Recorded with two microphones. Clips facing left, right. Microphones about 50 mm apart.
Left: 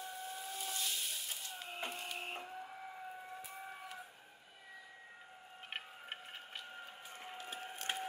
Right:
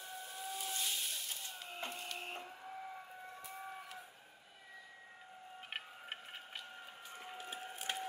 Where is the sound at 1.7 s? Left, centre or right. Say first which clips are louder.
Left 1 dB; centre.